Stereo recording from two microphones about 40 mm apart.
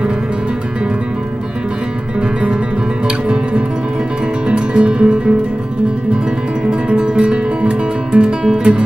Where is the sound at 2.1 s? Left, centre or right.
Right.